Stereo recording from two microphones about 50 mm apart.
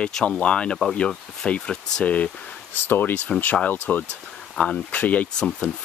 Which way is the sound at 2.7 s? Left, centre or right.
Left.